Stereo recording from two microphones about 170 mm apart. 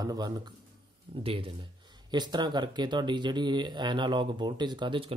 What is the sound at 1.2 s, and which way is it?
Speech, 35° right (ahead or behind).